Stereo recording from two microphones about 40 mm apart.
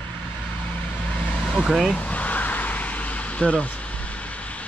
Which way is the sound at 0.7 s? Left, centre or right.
Left.